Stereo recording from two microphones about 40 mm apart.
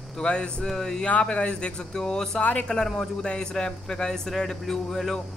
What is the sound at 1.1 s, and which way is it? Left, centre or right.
Speech, left.